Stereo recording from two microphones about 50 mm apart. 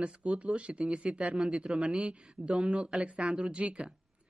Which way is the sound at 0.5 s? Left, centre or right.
Right.